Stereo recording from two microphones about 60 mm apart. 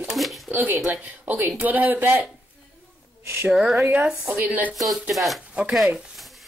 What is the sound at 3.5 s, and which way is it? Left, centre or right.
Speech, centre.